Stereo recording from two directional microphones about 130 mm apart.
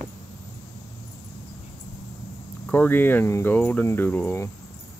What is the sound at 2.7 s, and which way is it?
Speech, 15° left (ahead or behind).